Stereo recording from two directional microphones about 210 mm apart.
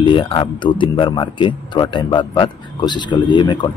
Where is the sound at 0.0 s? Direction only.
25° left (ahead or behind).